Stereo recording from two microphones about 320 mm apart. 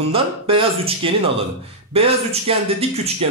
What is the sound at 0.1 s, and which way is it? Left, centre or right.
Speech, centre.